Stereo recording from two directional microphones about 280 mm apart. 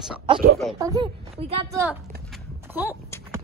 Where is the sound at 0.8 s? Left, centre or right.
Centre.